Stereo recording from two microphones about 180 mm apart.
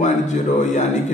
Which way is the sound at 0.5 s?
45° left (ahead or behind).